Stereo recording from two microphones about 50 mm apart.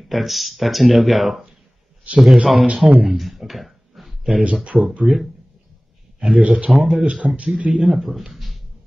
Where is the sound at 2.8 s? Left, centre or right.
Centre.